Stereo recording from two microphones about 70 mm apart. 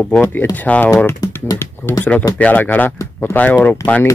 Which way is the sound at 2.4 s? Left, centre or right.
Left.